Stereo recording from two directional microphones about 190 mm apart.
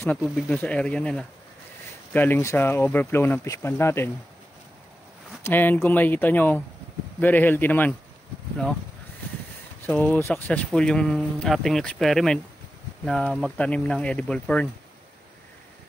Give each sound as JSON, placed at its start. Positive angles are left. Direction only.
{"t": 0.2, "sound": "speech", "side_deg": 5}
{"t": 5.4, "sound": "speech", "side_deg": 10}
{"t": 9.8, "sound": "speech", "side_deg": 10}